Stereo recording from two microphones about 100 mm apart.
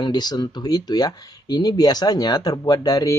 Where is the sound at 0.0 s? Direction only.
45° left (ahead or behind).